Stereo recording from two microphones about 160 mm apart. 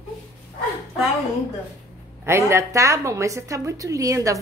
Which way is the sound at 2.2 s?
15° right (ahead or behind).